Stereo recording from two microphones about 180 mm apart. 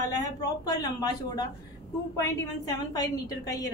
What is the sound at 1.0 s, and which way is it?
Speech, 20° left (ahead or behind).